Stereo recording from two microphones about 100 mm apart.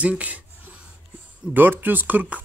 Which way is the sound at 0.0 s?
15° right (ahead or behind).